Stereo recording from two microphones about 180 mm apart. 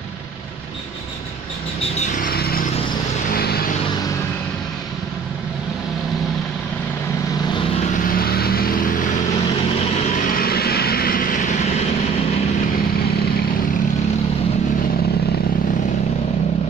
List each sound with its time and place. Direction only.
2.0 s vehicle: 50° left (ahead or behind)
8.1 s vehicle: 55° left (ahead or behind)
10.3 s vehicle: 55° left (ahead or behind)